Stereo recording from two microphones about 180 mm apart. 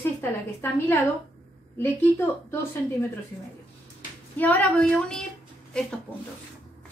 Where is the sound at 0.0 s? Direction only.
15° left (ahead or behind).